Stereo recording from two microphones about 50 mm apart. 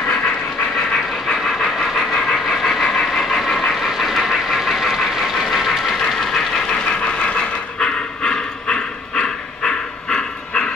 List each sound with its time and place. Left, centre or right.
1.3 s vehicle: centre
2.1 s train: centre
3.8 s vehicle: centre
6.9 s dog: centre